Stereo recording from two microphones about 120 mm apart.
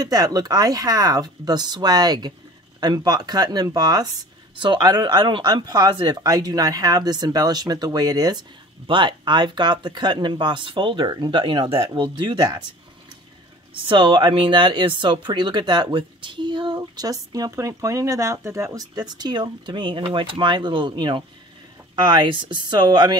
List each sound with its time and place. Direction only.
0.0 s speech: 30° right (ahead or behind)
13.8 s speech: 40° right (ahead or behind)